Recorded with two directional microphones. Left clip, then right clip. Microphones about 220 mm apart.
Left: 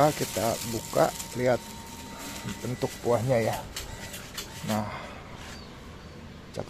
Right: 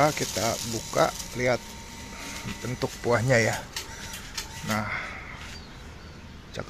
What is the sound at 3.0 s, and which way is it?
Speech, 10° right (ahead or behind).